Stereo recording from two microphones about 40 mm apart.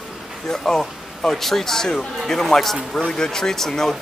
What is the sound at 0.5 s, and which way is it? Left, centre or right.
Speech, centre.